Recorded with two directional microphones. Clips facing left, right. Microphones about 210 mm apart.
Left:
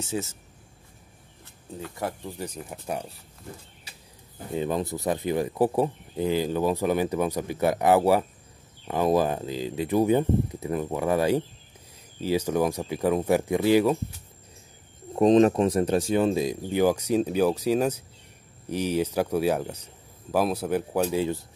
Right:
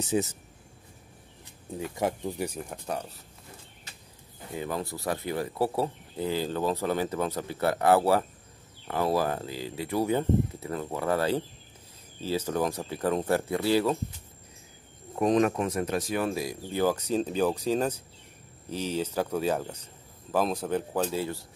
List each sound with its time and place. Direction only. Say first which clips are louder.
0.0 s speech: right 3 dB; 15° right (ahead or behind)
1.4 s speech: right 2 dB; 15° right (ahead or behind)
2.6 s speech: left 1 dB; 5° left (ahead or behind)
4.5 s speech: left 6 dB; 20° left (ahead or behind)
15.1 s speech: left 6 dB; 25° left (ahead or behind)